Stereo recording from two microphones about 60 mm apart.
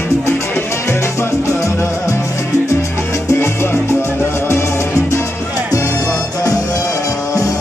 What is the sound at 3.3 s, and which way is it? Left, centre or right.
Music, left.